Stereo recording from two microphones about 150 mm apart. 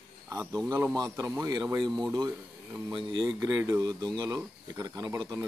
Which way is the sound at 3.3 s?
20° right (ahead or behind).